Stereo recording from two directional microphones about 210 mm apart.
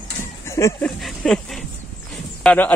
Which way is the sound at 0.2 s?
15° left (ahead or behind).